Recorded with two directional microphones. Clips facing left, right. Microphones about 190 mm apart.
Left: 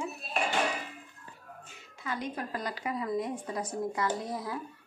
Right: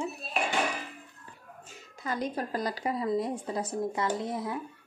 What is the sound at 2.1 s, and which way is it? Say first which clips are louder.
A woman's voice: right 3 dB; 35° right (ahead or behind).